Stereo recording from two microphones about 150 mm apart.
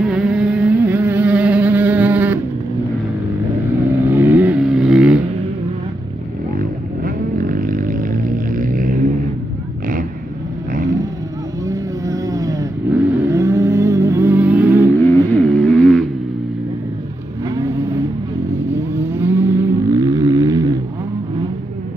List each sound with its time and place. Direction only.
0.0 s motorboat: 5° right (ahead or behind)
4.0 s vehicle: 15° right (ahead or behind)
6.5 s a sound: 70° right (ahead or behind)
11.6 s vehicle: 25° right (ahead or behind)
15.0 s a sound: 15° left (ahead or behind)
18.7 s vehicle: 15° right (ahead or behind)